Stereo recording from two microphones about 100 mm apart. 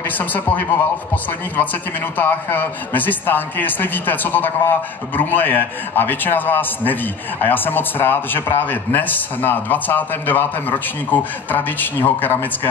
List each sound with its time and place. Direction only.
0.2 s a man's voice: 20° left (ahead or behind)